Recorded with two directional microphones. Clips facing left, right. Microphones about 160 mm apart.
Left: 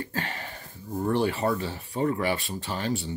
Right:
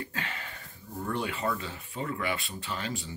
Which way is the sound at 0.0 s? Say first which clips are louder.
Left 5 dB; 35° left (ahead or behind).